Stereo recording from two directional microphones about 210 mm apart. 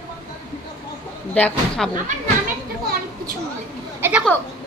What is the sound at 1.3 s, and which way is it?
Speech, 5° left (ahead or behind).